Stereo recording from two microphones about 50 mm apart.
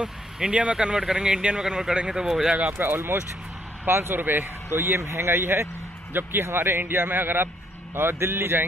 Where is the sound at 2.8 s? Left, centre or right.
Right.